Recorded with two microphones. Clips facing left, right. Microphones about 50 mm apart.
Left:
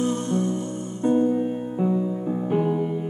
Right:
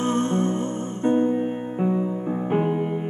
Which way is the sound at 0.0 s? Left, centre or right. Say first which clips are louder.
Right 2 dB; right.